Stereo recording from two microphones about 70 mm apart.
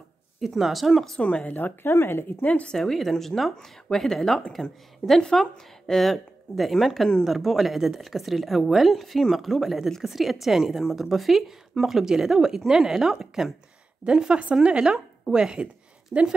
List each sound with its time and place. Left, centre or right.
0.4 s speech: centre
1.2 s a woman's voice: centre
2.4 s speech: centre
2.8 s a woman's voice: centre